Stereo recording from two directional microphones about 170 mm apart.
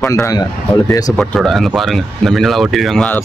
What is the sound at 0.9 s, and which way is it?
Mantra, 20° left (ahead or behind).